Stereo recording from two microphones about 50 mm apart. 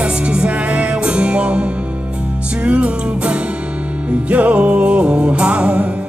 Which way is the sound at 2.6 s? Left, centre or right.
Right.